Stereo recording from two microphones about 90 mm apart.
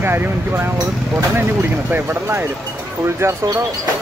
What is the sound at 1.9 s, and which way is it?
Speech, 25° right (ahead or behind).